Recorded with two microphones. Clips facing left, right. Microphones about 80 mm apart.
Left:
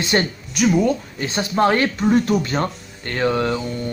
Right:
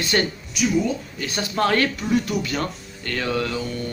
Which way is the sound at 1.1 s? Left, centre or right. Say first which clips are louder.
Left 4 dB; left.